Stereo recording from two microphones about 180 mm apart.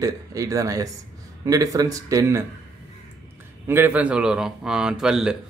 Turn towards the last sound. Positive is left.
turn(degrees=-5)  # may be behind; listen again after turning